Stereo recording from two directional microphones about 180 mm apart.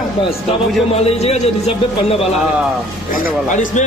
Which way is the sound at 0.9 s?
35° left (ahead or behind).